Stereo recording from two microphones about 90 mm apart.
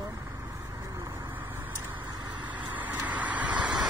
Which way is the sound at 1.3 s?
25° right (ahead or behind).